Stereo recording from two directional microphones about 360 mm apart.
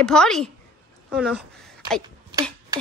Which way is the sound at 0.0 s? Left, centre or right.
Centre.